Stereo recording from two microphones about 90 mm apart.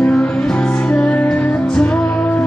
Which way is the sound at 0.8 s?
15° left (ahead or behind).